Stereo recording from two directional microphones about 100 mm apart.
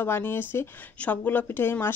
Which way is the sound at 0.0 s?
20° left (ahead or behind).